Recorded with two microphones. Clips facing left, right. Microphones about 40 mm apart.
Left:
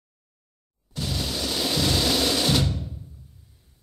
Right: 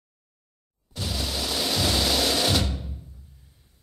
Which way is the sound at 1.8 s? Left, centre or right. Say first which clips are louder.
Left 1 dB; centre.